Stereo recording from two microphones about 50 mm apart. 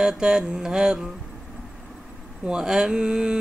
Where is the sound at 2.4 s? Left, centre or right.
Centre.